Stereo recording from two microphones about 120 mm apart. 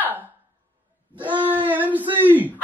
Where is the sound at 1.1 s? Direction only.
15° right (ahead or behind).